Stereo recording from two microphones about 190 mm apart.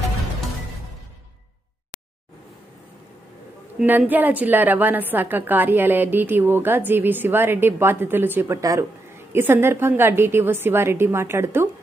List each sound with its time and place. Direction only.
3.7 s a woman's voice: 10° right (ahead or behind)